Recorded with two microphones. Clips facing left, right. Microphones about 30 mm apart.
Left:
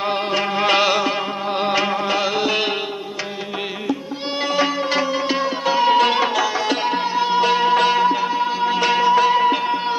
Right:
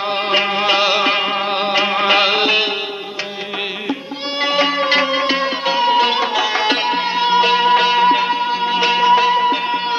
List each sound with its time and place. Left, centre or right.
0.6 s music: centre
0.9 s music: right
4.4 s music: right
5.9 s music: centre
6.4 s music: right
8.1 s music: right
8.4 s music: right